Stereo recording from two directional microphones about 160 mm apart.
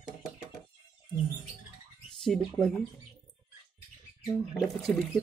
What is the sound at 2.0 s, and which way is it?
Speech, 5° left (ahead or behind).